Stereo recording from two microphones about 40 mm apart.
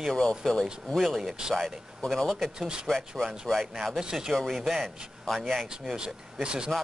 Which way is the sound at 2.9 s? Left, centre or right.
Centre.